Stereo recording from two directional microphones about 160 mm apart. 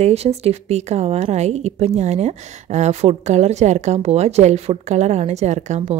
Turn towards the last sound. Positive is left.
turn(degrees=-45)  # may be behind; listen again after turning